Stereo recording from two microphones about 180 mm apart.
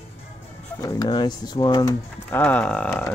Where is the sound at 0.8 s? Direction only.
20° left (ahead or behind).